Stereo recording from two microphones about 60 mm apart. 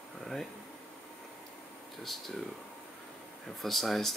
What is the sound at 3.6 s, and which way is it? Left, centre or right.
Speech, centre.